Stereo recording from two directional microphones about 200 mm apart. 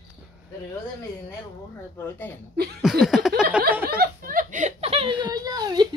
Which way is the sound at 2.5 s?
50° right (ahead or behind).